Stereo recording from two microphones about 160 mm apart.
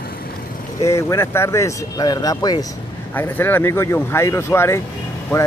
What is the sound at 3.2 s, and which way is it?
Speech, 15° left (ahead or behind).